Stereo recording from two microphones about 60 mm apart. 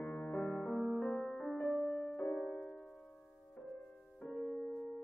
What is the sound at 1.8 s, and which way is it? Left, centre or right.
Music, left.